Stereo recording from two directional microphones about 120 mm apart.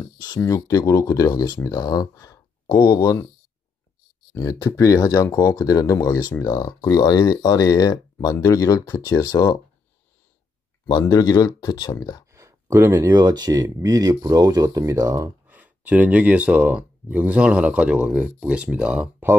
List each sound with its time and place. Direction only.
0.4 s speech: 25° left (ahead or behind)
4.4 s speech: 30° left (ahead or behind)
10.9 s speech: 30° left (ahead or behind)
12.3 s speech: 25° right (ahead or behind)
15.4 s speech: 15° right (ahead or behind)